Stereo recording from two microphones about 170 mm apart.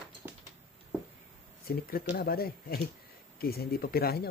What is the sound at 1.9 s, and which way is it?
Speech, 60° left (ahead or behind).